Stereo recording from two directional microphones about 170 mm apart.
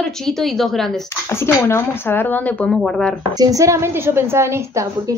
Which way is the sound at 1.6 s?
15° left (ahead or behind).